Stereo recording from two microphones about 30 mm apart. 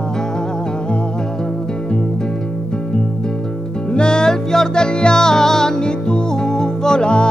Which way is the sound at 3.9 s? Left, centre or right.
Left.